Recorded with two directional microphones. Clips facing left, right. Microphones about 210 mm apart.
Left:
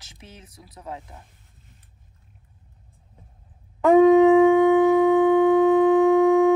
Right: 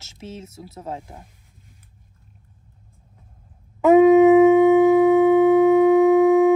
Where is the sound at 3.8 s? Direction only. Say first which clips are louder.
Right 2 dB; 5° right (ahead or behind).